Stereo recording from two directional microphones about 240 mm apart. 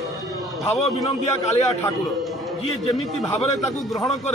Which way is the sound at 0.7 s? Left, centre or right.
Left.